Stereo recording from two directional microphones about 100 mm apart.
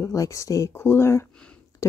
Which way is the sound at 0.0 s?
35° left (ahead or behind).